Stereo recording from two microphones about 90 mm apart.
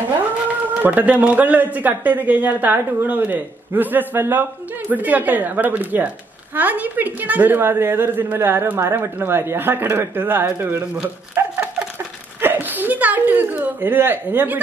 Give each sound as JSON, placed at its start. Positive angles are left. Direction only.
{"t": 0.8, "sound": "a man's voice", "side_deg": -15}
{"t": 11.4, "sound": "a sound", "side_deg": -25}
{"t": 12.4, "sound": "a woman's voice", "side_deg": -20}